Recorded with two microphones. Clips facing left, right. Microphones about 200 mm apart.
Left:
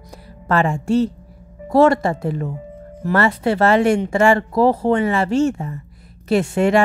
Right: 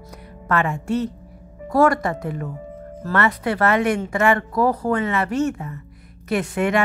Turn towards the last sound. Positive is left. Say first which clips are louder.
# left 5 dB
turn(degrees=30)  # may be behind; listen again after turning